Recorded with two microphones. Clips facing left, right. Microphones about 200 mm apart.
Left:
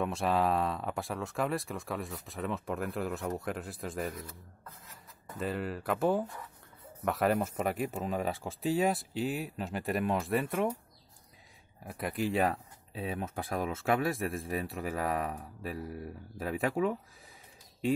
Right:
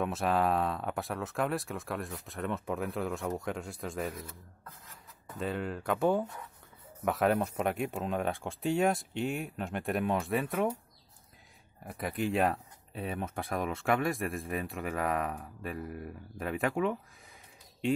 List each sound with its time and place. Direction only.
0.0 s speech: centre (ahead or behind)
5.4 s speech: 5° left (ahead or behind)
11.8 s speech: centre (ahead or behind)